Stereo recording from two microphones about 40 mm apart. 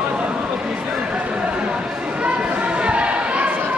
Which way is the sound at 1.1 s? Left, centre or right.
Right.